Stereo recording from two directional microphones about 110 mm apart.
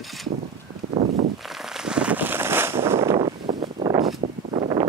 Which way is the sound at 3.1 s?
45° right (ahead or behind).